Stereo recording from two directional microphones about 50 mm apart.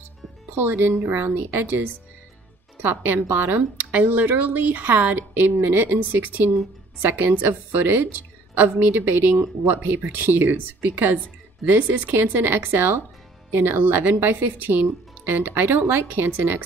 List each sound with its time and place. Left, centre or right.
1.1 s a woman's voice: right
9.3 s a woman's voice: right